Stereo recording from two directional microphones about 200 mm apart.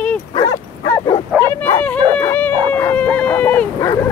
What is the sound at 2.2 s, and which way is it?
Howl, 10° left (ahead or behind).